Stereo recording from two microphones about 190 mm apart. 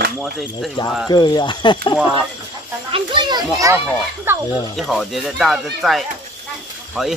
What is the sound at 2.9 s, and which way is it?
A child's voice, 25° right (ahead or behind).